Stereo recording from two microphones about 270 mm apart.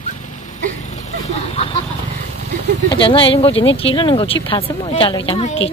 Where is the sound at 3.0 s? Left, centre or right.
Centre.